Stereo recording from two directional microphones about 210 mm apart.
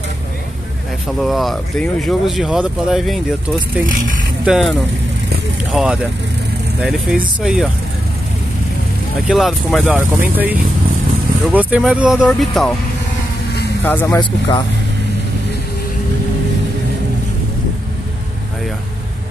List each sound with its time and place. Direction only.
1.2 s speech: centre (ahead or behind)
3.8 s speech: 40° right (ahead or behind)
4.5 s speech: centre (ahead or behind)
9.3 s speech: centre (ahead or behind)
13.8 s speech: 10° left (ahead or behind)